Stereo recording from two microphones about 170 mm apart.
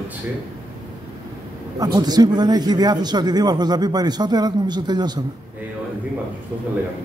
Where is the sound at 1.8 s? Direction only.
25° right (ahead or behind).